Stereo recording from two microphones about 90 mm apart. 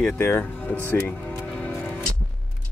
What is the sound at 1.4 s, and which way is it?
Music, 20° left (ahead or behind).